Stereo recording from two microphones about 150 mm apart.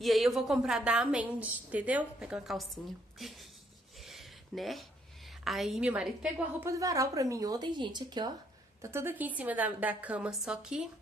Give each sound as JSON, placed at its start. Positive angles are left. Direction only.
{"t": 0.0, "sound": "a woman's voice", "side_deg": 0}
{"t": 4.0, "sound": "a sound", "side_deg": 0}
{"t": 5.4, "sound": "a woman's voice", "side_deg": 0}
{"t": 6.7, "sound": "speech", "side_deg": -20}
{"t": 8.8, "sound": "a woman's voice", "side_deg": -15}